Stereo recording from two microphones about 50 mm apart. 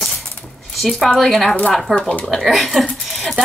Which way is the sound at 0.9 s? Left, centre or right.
Centre.